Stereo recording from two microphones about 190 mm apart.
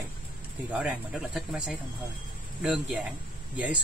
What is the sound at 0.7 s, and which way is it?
Speech, 5° right (ahead or behind).